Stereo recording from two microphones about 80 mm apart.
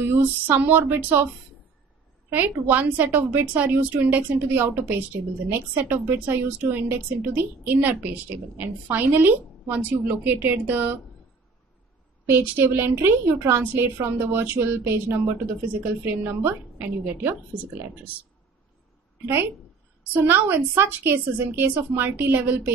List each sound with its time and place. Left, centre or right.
0.0 s a sound: right
0.5 s speech: right
2.3 s speech: right
12.3 s speech: right
19.2 s speech: right